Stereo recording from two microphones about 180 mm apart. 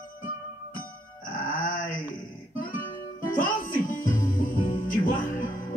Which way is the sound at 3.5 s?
50° left (ahead or behind).